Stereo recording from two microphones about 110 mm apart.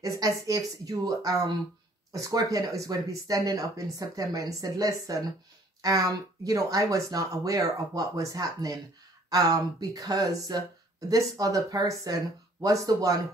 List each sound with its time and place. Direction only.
0.2 s speech: 30° right (ahead or behind)